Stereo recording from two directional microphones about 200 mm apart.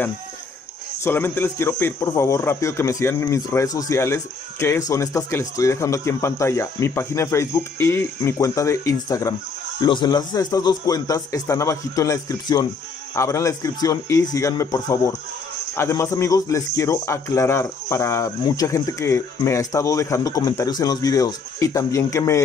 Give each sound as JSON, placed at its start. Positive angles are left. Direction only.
{"t": 1.0, "sound": "speech", "side_deg": 10}